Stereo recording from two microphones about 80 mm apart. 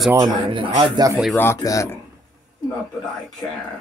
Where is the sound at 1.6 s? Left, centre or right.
Left.